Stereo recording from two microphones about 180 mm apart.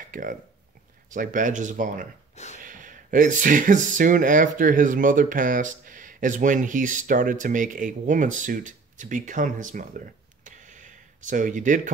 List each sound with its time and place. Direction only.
0.1 s speech: 50° right (ahead or behind)
2.3 s gasp: 40° left (ahead or behind)
2.6 s speech: 45° right (ahead or behind)